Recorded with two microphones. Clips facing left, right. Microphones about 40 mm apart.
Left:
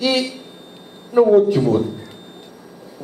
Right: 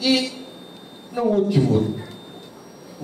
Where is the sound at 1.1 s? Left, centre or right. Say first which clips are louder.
Left 9 dB; left.